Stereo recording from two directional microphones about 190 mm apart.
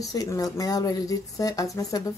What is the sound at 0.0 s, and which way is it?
Speech, 20° left (ahead or behind).